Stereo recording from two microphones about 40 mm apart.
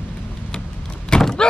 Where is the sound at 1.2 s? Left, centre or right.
Centre.